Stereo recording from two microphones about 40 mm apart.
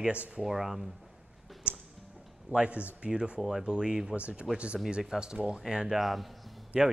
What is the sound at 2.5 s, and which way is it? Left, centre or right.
Speech, right.